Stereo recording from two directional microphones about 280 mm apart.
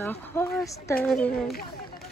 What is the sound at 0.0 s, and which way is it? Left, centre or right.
A woman's voice, centre.